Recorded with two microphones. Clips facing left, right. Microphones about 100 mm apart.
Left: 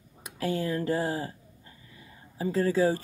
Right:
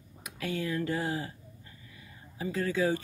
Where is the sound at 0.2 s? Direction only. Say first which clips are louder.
Left 4 dB; 35° left (ahead or behind).